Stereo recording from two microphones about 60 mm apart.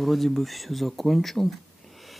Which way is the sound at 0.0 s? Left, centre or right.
Centre.